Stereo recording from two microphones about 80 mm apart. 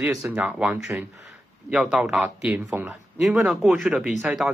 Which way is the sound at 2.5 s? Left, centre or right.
Right.